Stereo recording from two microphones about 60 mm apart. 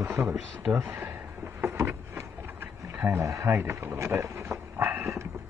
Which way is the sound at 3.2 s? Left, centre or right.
Right.